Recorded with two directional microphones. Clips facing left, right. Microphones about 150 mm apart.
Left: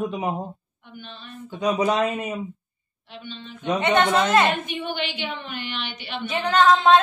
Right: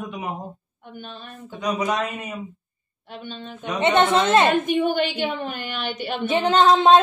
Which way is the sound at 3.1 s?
50° right (ahead or behind).